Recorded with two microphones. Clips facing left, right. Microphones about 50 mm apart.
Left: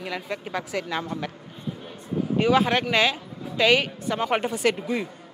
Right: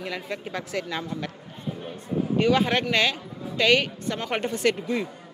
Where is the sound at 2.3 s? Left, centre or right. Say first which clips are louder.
Left 1 dB; centre.